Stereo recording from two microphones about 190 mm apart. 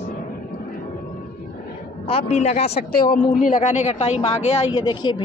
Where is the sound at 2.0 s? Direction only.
35° left (ahead or behind).